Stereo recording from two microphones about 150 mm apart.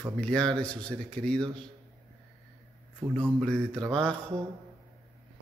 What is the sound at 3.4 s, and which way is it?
Speech, 5° left (ahead or behind).